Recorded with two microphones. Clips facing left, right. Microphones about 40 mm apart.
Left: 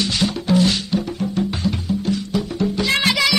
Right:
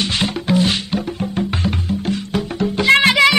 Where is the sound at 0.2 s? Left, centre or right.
Right.